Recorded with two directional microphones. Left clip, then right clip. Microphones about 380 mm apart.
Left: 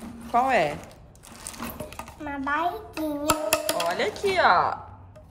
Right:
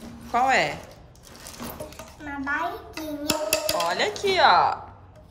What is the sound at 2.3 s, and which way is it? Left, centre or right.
Speech, centre.